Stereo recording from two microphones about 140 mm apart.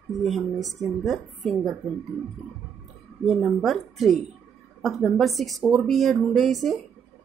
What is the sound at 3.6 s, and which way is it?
A woman's voice, centre (ahead or behind).